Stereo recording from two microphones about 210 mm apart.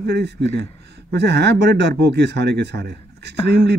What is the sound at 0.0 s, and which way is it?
A man's voice, 55° right (ahead or behind).